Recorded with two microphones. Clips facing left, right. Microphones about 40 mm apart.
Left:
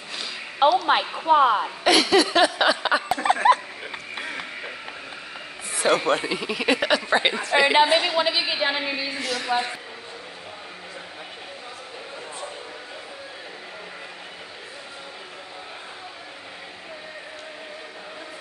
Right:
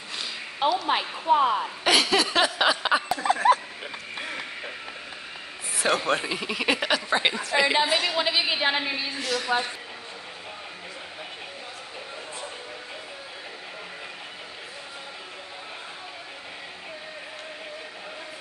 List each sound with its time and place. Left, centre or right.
0.6 s a woman's voice: left
1.2 s a woman's voice: left
1.9 s a sound: centre
3.3 s a sound: left
5.7 s speech: centre
7.5 s a woman's voice: centre
8.2 s speech: centre
8.5 s a woman's voice: centre
9.2 s speech: centre